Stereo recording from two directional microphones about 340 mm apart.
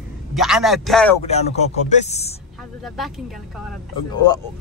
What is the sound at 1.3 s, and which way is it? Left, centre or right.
A man's voice, centre.